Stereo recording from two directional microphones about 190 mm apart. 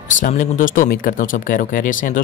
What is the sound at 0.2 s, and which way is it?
Speech, 45° left (ahead or behind).